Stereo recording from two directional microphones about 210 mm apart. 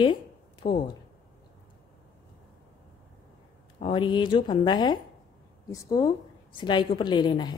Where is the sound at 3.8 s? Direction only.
20° left (ahead or behind).